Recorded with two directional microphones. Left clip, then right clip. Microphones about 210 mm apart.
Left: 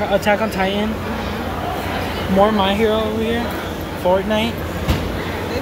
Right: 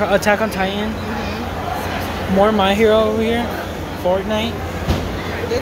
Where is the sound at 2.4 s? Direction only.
15° right (ahead or behind).